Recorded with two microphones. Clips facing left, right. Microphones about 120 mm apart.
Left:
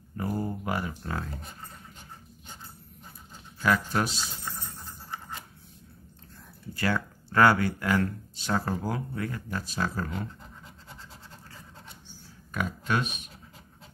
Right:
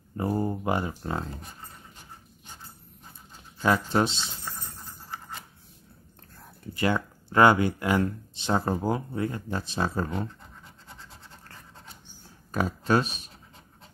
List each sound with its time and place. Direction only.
0.2 s speech: 25° right (ahead or behind)
3.6 s speech: 25° right (ahead or behind)
6.7 s speech: 20° right (ahead or behind)
12.5 s speech: 35° right (ahead or behind)